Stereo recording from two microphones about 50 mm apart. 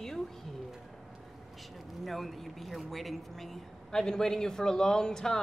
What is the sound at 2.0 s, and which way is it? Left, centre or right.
Speech, centre.